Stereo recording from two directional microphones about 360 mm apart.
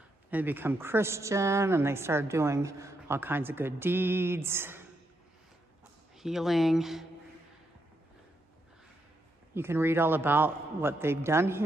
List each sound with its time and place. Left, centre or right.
0.3 s a woman's voice: centre
6.1 s speech: centre
9.5 s a woman's voice: centre